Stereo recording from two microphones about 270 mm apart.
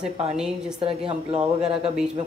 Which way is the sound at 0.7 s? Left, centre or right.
Right.